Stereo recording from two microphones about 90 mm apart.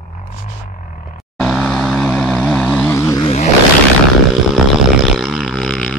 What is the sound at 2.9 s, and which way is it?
Vehicle, 25° left (ahead or behind).